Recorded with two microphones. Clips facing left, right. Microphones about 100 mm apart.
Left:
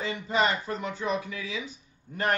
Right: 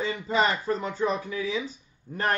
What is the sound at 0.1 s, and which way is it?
Speech, 35° right (ahead or behind).